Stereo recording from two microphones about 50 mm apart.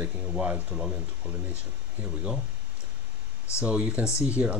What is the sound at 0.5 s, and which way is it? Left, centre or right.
Speech, right.